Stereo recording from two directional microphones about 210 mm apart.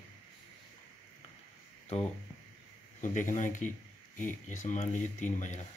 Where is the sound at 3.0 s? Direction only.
35° left (ahead or behind).